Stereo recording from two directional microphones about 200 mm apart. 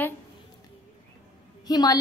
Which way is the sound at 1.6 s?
20° left (ahead or behind).